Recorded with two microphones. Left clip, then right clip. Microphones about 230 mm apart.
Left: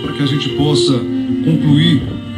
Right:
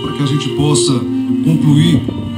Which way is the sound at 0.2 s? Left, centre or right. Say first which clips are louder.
Left 1 dB; right.